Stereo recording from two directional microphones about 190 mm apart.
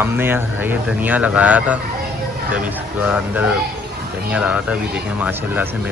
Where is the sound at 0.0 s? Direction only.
10° right (ahead or behind).